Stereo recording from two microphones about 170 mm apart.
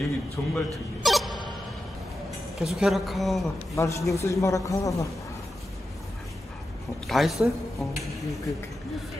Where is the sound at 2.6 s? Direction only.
Centre (ahead or behind).